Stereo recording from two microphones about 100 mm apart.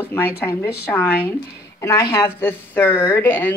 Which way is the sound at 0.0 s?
20° left (ahead or behind).